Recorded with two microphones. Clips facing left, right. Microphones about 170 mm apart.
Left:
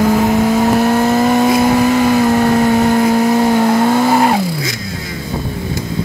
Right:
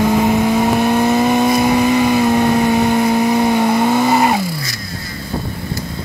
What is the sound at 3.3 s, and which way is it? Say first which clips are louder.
Vehicle: left 2 dB; centre (ahead or behind).